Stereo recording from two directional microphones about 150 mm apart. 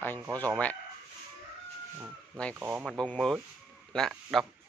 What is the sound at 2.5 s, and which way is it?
Speech, 10° right (ahead or behind).